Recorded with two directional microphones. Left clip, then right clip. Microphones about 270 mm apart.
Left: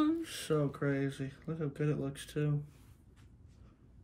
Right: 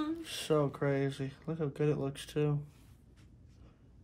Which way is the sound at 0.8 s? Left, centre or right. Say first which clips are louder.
Right 2 dB; centre.